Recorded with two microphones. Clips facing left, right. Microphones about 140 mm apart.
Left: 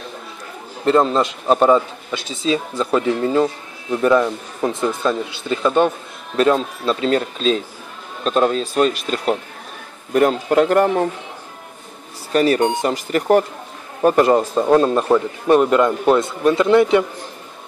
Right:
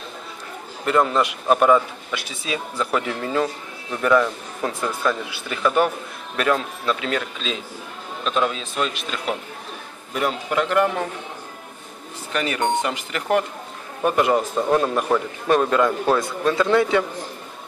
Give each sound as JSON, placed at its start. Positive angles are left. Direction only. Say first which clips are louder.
{"t": 0.8, "sound": "a man's voice", "louder": "left 4 dB", "side_deg": 30}
{"t": 12.3, "sound": "a man's voice", "louder": "left 7 dB", "side_deg": 35}